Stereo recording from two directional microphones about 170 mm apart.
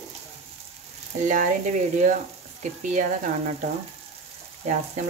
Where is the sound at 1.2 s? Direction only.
50° right (ahead or behind).